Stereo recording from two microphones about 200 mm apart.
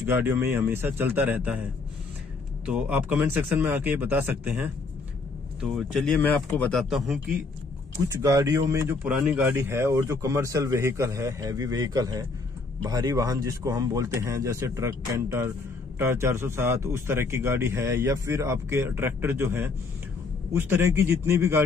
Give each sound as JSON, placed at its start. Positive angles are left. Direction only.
{"t": 0.0, "sound": "speech", "side_deg": -10}
{"t": 8.0, "sound": "speech", "side_deg": -15}